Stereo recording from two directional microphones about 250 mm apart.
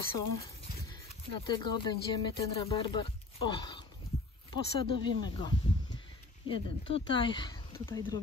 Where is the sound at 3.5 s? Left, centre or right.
Centre.